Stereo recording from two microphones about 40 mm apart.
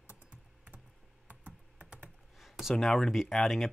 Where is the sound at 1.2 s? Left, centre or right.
Right.